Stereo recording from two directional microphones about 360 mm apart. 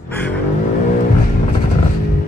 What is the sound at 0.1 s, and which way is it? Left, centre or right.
Vehicle, centre.